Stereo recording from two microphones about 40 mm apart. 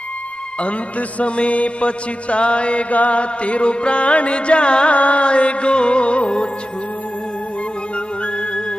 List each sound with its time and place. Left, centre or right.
0.6 s music: left